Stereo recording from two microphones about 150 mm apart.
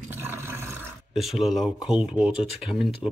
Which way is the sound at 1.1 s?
Centre (ahead or behind).